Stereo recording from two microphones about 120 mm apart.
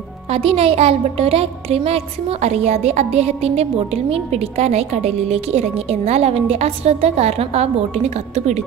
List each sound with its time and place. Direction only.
0.3 s a woman's voice: 55° right (ahead or behind); by 8.6 s 70° right (ahead or behind)